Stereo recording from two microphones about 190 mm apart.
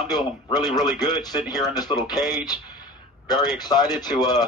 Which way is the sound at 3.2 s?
20° left (ahead or behind).